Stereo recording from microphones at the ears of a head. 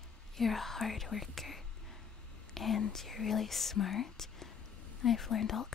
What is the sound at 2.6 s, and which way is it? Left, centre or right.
Speech, left.